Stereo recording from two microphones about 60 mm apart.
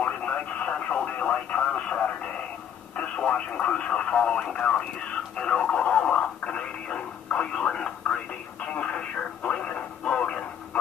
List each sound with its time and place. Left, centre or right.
0.0 s radio: left